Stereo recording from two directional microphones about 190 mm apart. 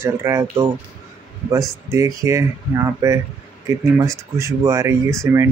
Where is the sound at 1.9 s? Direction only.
15° right (ahead or behind).